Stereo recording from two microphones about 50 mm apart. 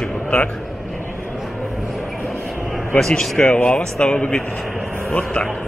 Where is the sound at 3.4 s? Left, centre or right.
Left.